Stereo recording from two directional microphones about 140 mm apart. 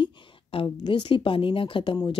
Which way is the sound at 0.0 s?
40° left (ahead or behind).